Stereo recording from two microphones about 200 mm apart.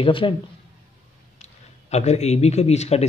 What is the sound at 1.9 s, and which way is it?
Speech, 35° left (ahead or behind).